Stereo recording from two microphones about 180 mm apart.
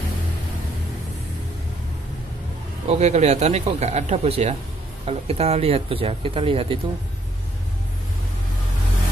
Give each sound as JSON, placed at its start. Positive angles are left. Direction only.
{"t": 2.9, "sound": "speech", "side_deg": -40}